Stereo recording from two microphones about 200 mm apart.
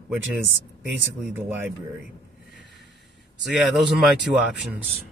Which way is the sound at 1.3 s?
10° right (ahead or behind).